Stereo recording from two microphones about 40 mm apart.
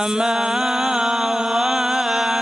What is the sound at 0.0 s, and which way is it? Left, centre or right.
Mantra, centre.